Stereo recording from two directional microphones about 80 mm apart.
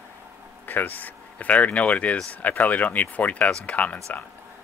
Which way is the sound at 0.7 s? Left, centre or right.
Left.